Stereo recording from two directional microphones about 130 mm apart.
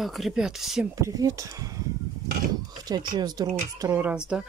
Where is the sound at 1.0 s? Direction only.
25° right (ahead or behind).